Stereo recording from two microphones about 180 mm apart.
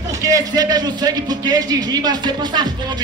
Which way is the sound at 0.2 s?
20° right (ahead or behind).